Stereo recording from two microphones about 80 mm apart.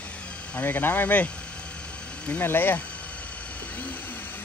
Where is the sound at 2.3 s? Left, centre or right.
Left.